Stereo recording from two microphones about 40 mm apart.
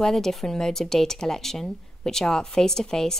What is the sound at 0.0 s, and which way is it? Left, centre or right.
Speech, centre.